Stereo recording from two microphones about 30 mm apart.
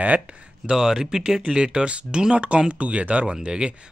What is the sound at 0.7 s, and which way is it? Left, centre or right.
Speech, centre.